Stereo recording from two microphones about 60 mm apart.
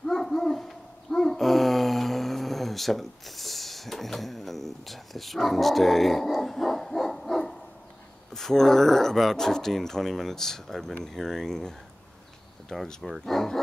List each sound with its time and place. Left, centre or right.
0.0 s dog: centre
8.3 s speech: centre